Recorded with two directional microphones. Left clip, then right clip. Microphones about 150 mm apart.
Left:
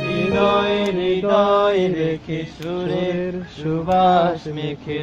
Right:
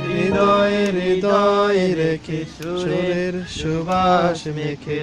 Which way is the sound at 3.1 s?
10° right (ahead or behind).